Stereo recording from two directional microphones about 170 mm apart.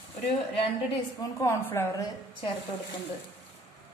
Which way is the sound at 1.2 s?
15° left (ahead or behind).